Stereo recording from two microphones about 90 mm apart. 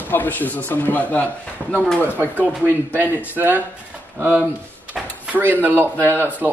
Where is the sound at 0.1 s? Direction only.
20° left (ahead or behind).